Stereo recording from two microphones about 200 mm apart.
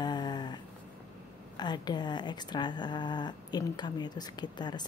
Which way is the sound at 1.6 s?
20° left (ahead or behind).